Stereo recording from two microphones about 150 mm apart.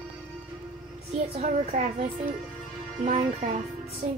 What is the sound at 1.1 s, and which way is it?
Speech, 45° right (ahead or behind).